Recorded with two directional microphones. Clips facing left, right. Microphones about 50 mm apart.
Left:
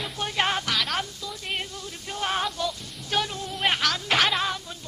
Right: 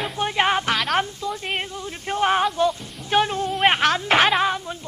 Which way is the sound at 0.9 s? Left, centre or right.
Right.